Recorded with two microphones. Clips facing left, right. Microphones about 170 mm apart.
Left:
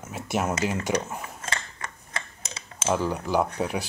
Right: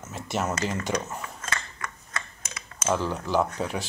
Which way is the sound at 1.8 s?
25° left (ahead or behind).